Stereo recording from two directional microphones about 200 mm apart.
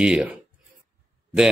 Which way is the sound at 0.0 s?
5° right (ahead or behind).